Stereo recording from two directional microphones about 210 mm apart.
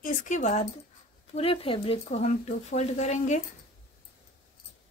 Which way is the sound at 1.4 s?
25° left (ahead or behind).